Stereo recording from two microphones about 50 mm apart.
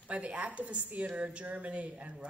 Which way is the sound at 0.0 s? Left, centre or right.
Right.